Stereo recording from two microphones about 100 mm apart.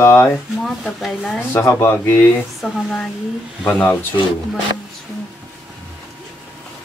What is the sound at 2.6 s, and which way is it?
Speech, centre (ahead or behind).